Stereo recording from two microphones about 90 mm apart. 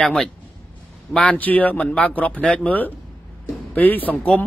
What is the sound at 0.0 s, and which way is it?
Speech, 10° left (ahead or behind).